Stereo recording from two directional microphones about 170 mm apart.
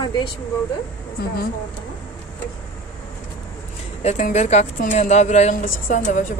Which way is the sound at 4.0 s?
45° left (ahead or behind).